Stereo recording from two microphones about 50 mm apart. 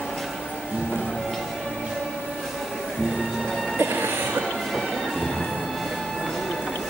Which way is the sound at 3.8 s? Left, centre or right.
Right.